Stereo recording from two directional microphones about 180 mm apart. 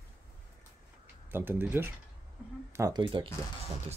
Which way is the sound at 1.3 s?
10° right (ahead or behind).